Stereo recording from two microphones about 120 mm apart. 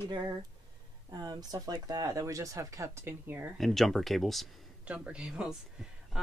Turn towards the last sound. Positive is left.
turn(degrees=-5)  # may be behind; listen again after turning